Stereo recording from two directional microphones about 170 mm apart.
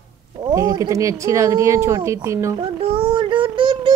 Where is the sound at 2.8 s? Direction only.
30° right (ahead or behind).